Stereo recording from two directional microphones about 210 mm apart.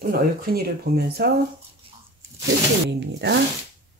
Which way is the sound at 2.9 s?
55° right (ahead or behind).